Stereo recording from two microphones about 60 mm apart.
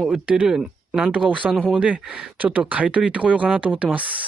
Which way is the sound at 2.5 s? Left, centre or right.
Right.